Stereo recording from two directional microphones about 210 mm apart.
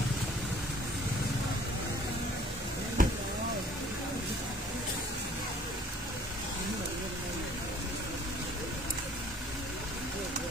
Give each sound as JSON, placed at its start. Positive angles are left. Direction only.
{"t": 3.0, "sound": "vehicle", "side_deg": -40}